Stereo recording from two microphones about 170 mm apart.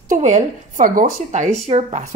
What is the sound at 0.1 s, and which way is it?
Speech, 45° right (ahead or behind).